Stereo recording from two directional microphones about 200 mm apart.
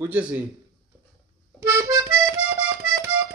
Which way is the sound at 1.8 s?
15° right (ahead or behind).